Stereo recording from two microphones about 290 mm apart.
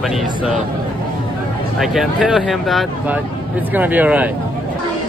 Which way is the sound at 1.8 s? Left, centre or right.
Centre.